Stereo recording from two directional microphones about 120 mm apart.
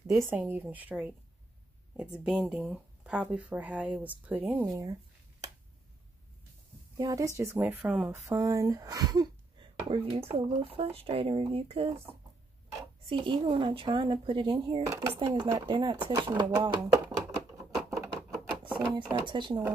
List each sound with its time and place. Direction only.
0.1 s speech: 15° right (ahead or behind)
2.2 s speech: 10° right (ahead or behind)
4.6 s speech: 30° right (ahead or behind)
7.0 s a woman's voice: 30° right (ahead or behind); by 8.1 s 10° right (ahead or behind)
8.5 s speech: 25° right (ahead or behind); by 11.9 s 50° right (ahead or behind)
13.0 s speech: 45° right (ahead or behind)
14.9 s speech: 15° right (ahead or behind)
15.1 s speech: 45° right (ahead or behind)
17.8 s patter: 25° right (ahead or behind)
18.5 s a sound: 40° right (ahead or behind)
19.2 s speech: 40° right (ahead or behind)